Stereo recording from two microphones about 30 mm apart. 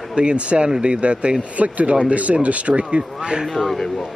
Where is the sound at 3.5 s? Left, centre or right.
Centre.